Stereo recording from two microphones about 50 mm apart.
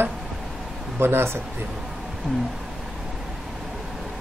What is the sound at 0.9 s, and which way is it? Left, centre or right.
Speech, right.